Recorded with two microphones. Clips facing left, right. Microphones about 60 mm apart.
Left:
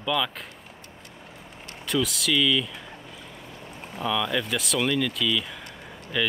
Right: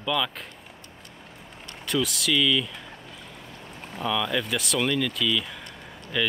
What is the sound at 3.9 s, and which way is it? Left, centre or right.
Speech, centre.